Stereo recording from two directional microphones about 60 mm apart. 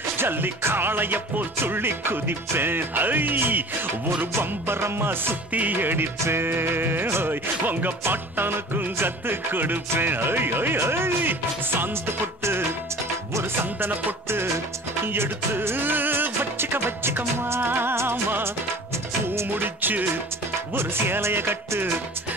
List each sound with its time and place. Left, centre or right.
0.2 s music: right
20.7 s music: right